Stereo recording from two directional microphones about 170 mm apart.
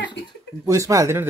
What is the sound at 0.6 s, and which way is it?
Speech, 20° right (ahead or behind).